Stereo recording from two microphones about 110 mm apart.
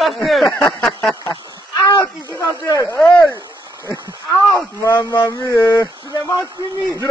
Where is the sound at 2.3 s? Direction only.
30° left (ahead or behind).